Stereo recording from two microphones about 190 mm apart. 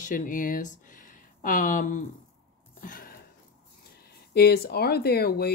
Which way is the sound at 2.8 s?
50° left (ahead or behind).